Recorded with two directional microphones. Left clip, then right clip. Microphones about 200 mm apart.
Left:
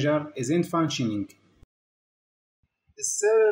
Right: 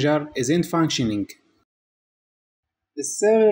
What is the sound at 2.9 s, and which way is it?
Speech, 40° right (ahead or behind).